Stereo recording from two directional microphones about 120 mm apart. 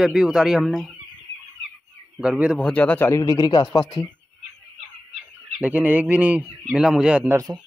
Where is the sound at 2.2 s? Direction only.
10° right (ahead or behind).